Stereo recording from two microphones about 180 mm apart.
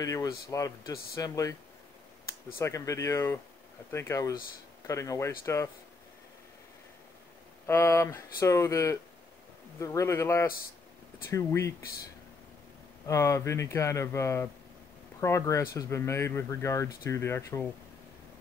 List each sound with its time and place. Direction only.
0.0 s speech: 20° left (ahead or behind)
2.6 s speech: 15° left (ahead or behind)
7.6 s speech: 15° left (ahead or behind)
13.0 s speech: 15° left (ahead or behind)